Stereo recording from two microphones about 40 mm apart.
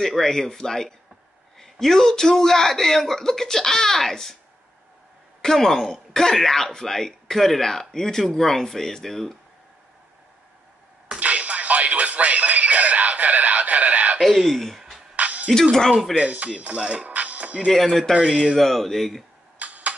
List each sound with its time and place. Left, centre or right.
0.0 s a man's voice: centre
5.4 s a man's voice: centre
11.1 s music: right
14.2 s speech: centre
15.1 s music: right
16.4 s speech: right
17.7 s speech: centre
18.1 s speech: centre
18.6 s speech: centre
19.6 s camera: right